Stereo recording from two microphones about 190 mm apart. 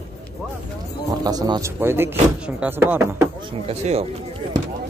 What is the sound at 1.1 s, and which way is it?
Speech, 20° right (ahead or behind).